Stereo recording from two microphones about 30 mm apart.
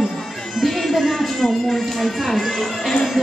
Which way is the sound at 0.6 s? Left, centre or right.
Centre.